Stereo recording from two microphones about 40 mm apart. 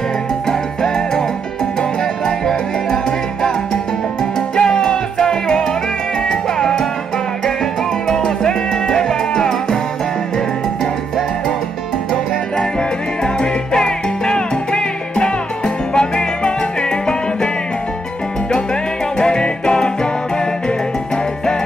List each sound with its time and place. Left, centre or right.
0.5 s music: centre
6.2 s salsa music: centre
8.1 s music: centre
13.2 s music: centre
19.1 s music: left